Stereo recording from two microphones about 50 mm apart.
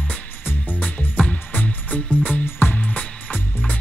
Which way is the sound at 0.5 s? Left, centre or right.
Left.